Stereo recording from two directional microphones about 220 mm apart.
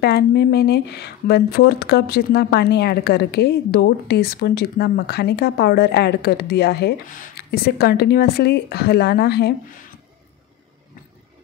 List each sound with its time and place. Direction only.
0.0 s speech: 50° left (ahead or behind)